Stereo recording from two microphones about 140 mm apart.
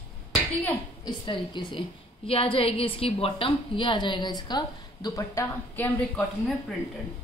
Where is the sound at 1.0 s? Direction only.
35° left (ahead or behind); by 6.2 s 10° left (ahead or behind).